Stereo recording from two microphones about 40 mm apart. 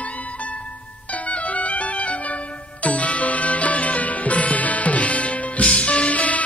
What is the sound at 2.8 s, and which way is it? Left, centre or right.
Music, left.